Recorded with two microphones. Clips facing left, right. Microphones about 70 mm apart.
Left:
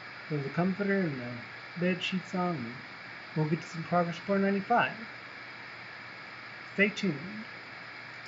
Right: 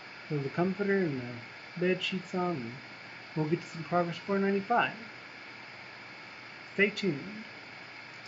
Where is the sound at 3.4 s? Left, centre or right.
Left.